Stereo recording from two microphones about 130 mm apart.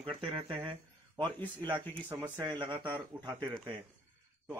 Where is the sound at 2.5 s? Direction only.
35° right (ahead or behind).